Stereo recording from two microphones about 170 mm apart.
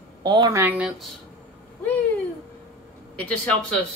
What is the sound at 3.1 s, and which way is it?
Speech, 10° left (ahead or behind).